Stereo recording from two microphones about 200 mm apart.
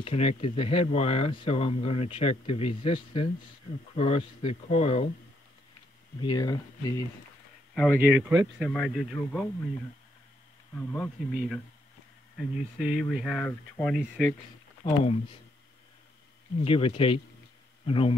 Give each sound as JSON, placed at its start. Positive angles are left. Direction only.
{"t": 0.0, "sound": "speech", "side_deg": 30}
{"t": 6.2, "sound": "speech", "side_deg": 20}
{"t": 7.7, "sound": "speech", "side_deg": 0}
{"t": 8.5, "sound": "speech", "side_deg": 5}
{"t": 10.7, "sound": "insect", "side_deg": 10}
{"t": 11.3, "sound": "speech", "side_deg": 0}
{"t": 14.9, "sound": "speech", "side_deg": 25}
{"t": 16.6, "sound": "speech", "side_deg": 25}